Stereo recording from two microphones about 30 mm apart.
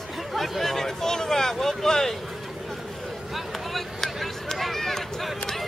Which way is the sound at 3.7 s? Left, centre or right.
Centre.